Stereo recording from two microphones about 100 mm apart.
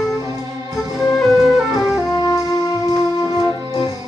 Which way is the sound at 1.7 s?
40° left (ahead or behind).